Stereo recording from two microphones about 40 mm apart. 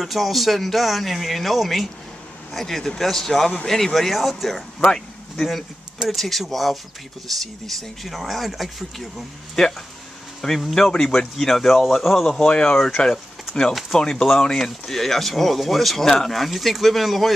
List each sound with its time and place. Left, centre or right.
0.0 s speech: centre
4.1 s speech: centre
4.7 s a sound: centre
6.0 s speech: centre
10.7 s speech: centre
11.3 s speech: centre
12.3 s speech: left; by 17.3 s centre